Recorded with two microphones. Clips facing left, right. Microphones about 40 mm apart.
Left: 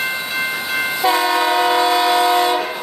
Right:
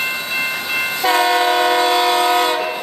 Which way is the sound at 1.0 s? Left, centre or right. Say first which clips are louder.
Right 2 dB; right.